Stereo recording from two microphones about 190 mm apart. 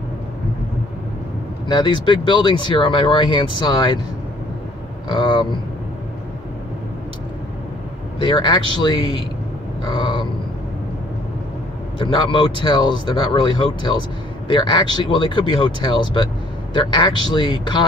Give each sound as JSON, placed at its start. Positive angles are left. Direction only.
{"t": 1.7, "sound": "speech", "side_deg": 25}
{"t": 5.0, "sound": "speech", "side_deg": 25}
{"t": 8.2, "sound": "speech", "side_deg": 25}
{"t": 9.8, "sound": "a sound", "side_deg": 25}
{"t": 12.0, "sound": "speech", "side_deg": 25}